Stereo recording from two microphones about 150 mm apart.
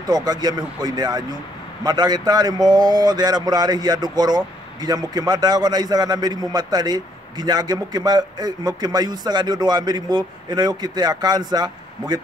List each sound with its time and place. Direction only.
0.1 s a man's voice: 25° right (ahead or behind)